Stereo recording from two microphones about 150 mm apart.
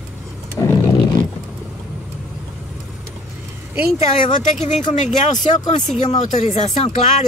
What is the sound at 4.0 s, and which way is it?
Speech, 55° left (ahead or behind).